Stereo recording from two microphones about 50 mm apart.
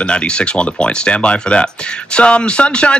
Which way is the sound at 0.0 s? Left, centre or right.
Left.